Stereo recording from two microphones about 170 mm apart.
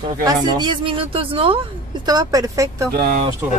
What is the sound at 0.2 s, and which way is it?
Speech, 25° right (ahead or behind).